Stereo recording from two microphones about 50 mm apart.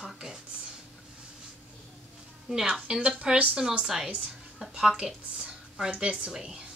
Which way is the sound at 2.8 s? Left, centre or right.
Right.